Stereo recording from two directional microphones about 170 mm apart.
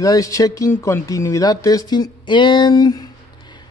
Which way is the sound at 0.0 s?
20° left (ahead or behind).